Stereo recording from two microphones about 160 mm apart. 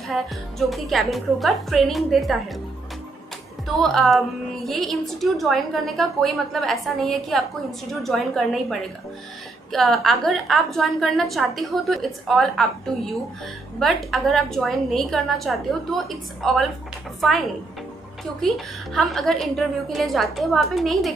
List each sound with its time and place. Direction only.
0.1 s a woman's voice: centre (ahead or behind)
3.6 s a woman's voice: centre (ahead or behind)
18.9 s a woman's voice: centre (ahead or behind)